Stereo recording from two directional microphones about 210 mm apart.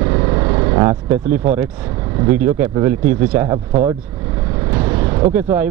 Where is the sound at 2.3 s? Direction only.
10° right (ahead or behind).